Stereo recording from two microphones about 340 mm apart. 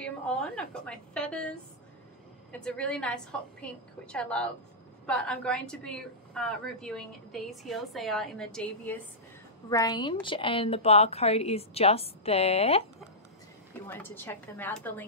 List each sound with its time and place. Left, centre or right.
0.0 s a woman's voice: centre
13.7 s a woman's voice: centre